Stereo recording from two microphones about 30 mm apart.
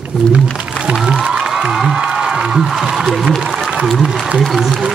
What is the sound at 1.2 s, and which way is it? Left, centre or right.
Music, right.